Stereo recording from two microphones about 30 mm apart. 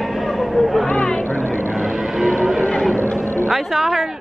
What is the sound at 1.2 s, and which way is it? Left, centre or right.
Vehicle, left.